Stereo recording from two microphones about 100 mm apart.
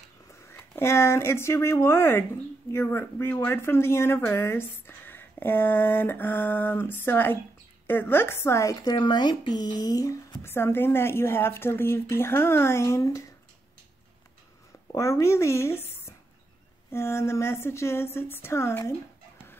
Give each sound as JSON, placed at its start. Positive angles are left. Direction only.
{"t": 0.3, "sound": "speech", "side_deg": 25}
{"t": 8.8, "sound": "speech", "side_deg": 45}
{"t": 10.4, "sound": "speech", "side_deg": 25}
{"t": 14.9, "sound": "speech", "side_deg": 30}